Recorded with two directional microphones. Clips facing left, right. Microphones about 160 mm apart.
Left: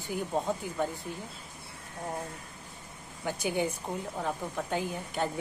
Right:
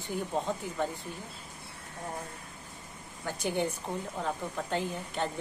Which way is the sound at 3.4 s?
5° left (ahead or behind).